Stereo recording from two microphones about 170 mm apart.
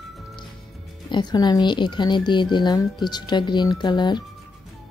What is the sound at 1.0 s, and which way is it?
Speech, 25° left (ahead or behind).